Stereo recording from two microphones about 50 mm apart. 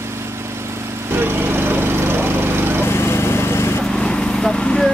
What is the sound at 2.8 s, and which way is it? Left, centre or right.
Lawn mower, left.